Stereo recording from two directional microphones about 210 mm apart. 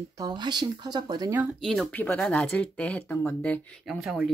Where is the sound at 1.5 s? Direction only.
Centre (ahead or behind).